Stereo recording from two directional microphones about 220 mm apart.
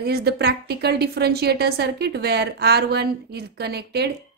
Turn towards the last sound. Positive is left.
turn(degrees=-45)  # may be behind; listen again after turning